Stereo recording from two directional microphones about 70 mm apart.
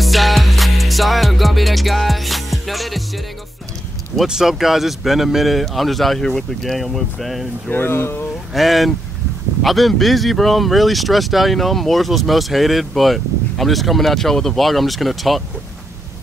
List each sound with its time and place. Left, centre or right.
0.0 s music: centre
4.2 s speech: centre
7.7 s speech: left
8.5 s speech: centre